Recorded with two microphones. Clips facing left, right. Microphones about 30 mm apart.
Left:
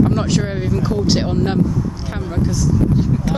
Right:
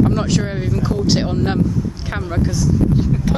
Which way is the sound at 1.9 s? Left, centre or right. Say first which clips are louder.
Right 1 dB; centre.